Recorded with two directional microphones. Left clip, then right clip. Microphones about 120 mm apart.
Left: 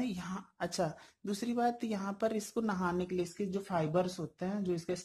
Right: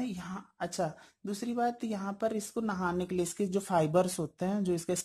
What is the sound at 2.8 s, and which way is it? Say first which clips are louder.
Speech: right 2 dB; 30° right (ahead or behind).